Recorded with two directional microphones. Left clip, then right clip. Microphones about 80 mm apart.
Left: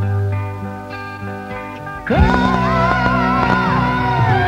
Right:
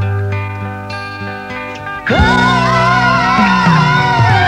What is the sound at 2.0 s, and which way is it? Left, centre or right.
Music, left.